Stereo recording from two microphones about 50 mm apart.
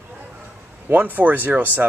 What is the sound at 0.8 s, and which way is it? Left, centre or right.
Speech, right.